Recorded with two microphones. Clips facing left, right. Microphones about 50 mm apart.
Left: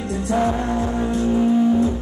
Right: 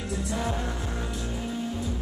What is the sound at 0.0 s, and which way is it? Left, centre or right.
Music, left.